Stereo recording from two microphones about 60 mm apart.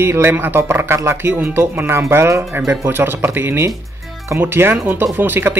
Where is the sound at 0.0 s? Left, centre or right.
Right.